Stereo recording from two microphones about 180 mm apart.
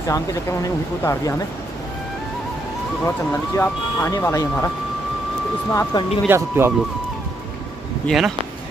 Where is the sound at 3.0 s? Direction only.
10° left (ahead or behind).